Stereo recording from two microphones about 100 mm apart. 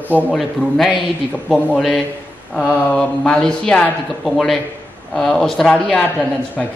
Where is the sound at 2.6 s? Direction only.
15° left (ahead or behind).